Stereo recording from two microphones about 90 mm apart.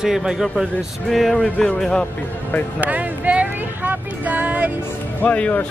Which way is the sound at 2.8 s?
15° right (ahead or behind).